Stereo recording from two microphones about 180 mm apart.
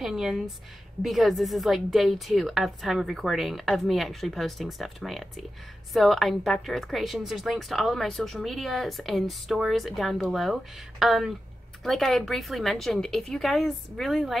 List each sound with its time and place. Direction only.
0.0 s a woman's voice: centre (ahead or behind)